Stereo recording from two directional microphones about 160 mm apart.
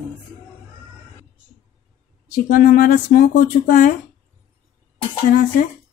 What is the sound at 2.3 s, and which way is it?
Speech, 60° left (ahead or behind).